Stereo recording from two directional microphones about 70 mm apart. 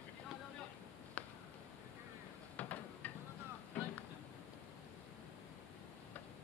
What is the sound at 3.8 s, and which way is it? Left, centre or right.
Vehicle, left.